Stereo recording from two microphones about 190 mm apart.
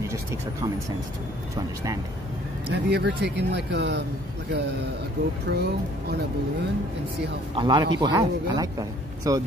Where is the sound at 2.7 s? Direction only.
60° right (ahead or behind).